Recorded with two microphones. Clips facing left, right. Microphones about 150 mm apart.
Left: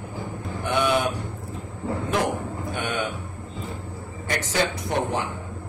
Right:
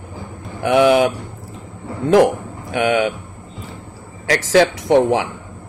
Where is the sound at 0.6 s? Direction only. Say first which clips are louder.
Right 10 dB; 90° right.